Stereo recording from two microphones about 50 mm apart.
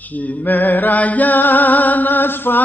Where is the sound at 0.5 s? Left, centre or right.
Left.